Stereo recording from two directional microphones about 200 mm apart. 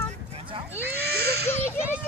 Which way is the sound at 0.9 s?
55° right (ahead or behind).